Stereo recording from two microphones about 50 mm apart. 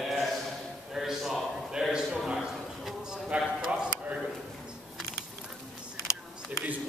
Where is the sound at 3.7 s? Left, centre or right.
Right.